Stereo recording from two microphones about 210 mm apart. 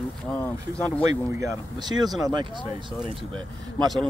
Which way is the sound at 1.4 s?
15° right (ahead or behind).